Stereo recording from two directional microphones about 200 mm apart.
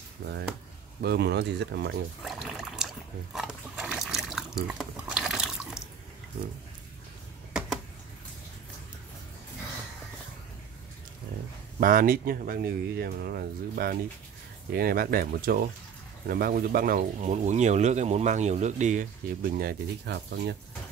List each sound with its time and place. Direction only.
0.2 s speech: 55° right (ahead or behind)
2.2 s a sound: centre (ahead or behind)
3.3 s liquid: 5° right (ahead or behind)
11.8 s speech: 45° right (ahead or behind)